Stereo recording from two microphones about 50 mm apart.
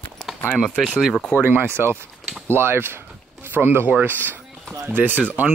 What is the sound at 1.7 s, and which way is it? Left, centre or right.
Speech, right.